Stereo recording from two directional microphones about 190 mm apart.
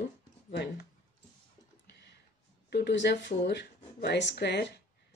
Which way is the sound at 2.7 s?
65° left (ahead or behind).